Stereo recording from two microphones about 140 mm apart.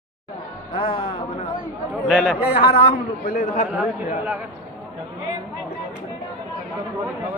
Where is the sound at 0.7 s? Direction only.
40° left (ahead or behind).